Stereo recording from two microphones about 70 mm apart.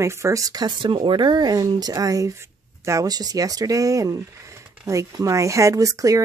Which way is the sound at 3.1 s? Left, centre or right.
Right.